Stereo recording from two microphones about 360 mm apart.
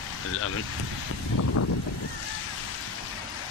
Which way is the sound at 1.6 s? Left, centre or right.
Left.